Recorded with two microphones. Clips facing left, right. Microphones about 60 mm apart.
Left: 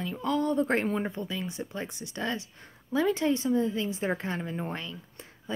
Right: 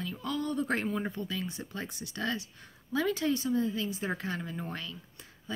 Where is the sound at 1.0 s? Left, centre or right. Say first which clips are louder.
Left 2 dB; left.